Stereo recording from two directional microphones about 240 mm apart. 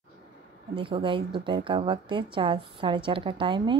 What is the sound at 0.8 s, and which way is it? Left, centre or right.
A woman's voice, right.